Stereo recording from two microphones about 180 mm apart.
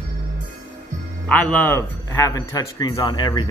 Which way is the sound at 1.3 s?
10° left (ahead or behind).